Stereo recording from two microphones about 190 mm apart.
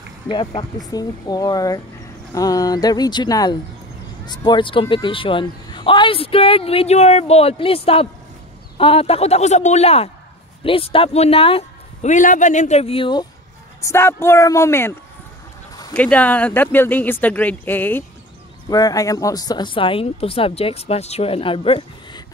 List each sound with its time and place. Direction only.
0.6 s speech: 20° left (ahead or behind)
13.7 s speech: 15° left (ahead or behind)